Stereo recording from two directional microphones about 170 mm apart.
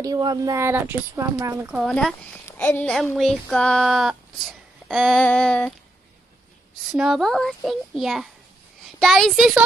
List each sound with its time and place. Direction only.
0.0 s speech: 25° right (ahead or behind)
1.8 s speech: centre (ahead or behind)
2.4 s speech: 10° left (ahead or behind)
6.9 s speech: centre (ahead or behind)